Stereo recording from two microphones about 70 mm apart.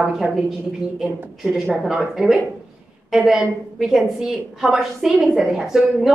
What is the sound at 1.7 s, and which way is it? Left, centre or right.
A woman's voice, centre.